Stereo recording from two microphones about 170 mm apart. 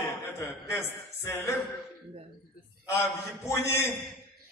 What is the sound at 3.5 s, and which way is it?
Speech, 15° left (ahead or behind).